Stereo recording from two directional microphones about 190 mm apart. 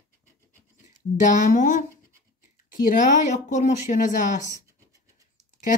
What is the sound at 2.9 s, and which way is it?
Speech, 40° left (ahead or behind).